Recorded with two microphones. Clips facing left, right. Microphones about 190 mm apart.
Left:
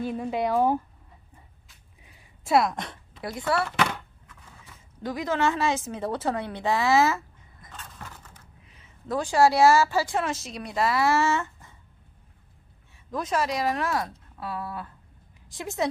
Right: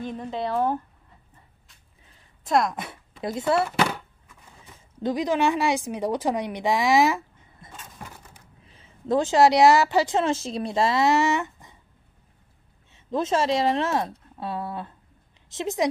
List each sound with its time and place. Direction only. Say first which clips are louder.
0.0 s speech: left 3 dB; 10° left (ahead or behind)
2.0 s a sound: left 1 dB; 10° left (ahead or behind); by 3.0 s 5° right (ahead or behind)
3.2 s speech: right 4 dB; 25° right (ahead or behind)
5.0 s a woman's voice: right 3 dB; 20° right (ahead or behind)
7.7 s vehicle: right 1 dB; 10° right (ahead or behind)
8.6 s a woman's voice: right 7 dB; 30° right (ahead or behind)
12.9 s speech: right 4 dB; 25° right (ahead or behind)